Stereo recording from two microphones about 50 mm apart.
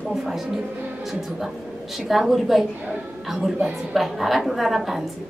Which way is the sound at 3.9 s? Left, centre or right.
Centre.